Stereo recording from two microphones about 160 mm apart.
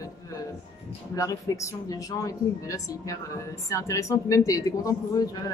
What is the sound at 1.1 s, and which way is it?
A woman's voice, 20° left (ahead or behind).